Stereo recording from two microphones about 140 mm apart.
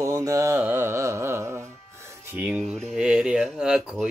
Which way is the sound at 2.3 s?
10° right (ahead or behind).